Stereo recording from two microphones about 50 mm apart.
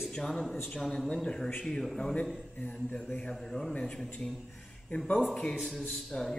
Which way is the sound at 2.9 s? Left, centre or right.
Left.